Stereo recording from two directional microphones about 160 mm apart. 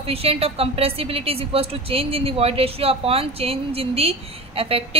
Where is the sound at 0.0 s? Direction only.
35° right (ahead or behind).